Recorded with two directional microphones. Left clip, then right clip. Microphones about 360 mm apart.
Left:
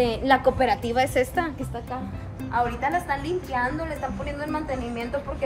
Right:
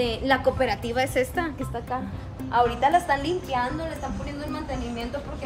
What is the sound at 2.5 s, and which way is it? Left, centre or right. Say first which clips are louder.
Speech: right 4 dB; centre.